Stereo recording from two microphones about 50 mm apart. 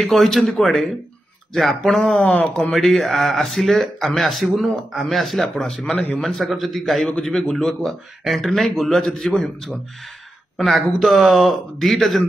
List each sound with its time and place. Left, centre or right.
0.0 s a man's voice: centre
2.2 s speech: left
2.5 s a man's voice: centre
10.6 s a man's voice: centre